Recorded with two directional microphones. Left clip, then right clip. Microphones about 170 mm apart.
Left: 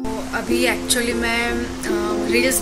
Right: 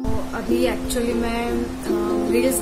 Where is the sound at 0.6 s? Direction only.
15° right (ahead or behind).